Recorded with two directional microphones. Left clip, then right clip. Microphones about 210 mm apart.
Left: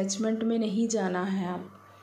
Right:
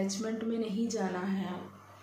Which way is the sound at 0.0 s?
35° left (ahead or behind).